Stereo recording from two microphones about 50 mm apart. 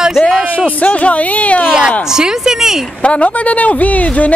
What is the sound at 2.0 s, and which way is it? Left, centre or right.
Speech, centre.